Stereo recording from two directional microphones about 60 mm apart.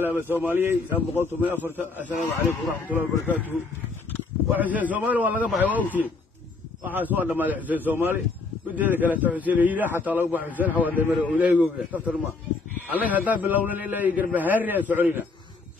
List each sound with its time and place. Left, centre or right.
0.0 s a man's voice: right
4.6 s a man's voice: right